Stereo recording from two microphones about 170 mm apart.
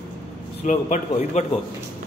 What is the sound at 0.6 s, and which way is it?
Speech, 45° left (ahead or behind).